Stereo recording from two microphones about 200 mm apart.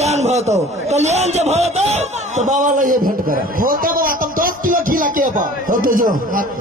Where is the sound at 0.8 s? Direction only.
35° right (ahead or behind).